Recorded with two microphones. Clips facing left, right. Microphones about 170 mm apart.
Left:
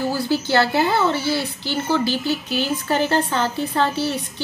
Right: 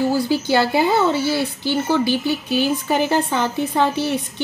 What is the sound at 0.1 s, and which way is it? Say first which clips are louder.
Speech: right 2 dB; 15° right (ahead or behind).